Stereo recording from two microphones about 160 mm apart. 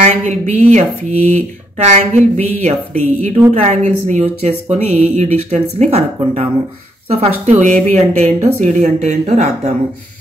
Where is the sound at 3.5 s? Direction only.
40° right (ahead or behind).